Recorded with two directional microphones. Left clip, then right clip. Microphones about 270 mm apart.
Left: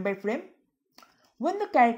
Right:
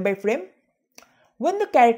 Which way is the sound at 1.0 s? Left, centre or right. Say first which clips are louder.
Right 6 dB; right.